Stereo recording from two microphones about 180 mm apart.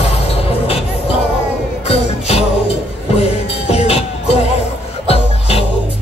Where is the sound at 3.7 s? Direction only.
35° left (ahead or behind).